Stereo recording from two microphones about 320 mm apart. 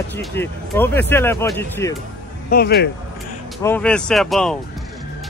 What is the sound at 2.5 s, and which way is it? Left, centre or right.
Speech, left.